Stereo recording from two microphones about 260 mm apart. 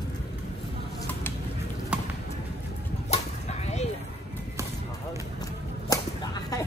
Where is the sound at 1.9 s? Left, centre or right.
Centre.